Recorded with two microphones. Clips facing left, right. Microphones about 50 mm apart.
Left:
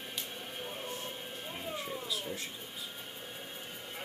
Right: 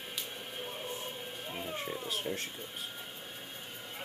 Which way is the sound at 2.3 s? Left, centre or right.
Right.